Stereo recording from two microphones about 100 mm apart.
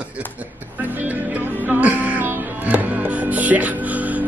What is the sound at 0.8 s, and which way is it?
Music, 20° right (ahead or behind).